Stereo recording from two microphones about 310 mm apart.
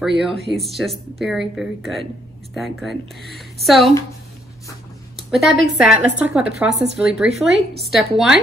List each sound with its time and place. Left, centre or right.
0.0 s speech: centre
5.3 s speech: centre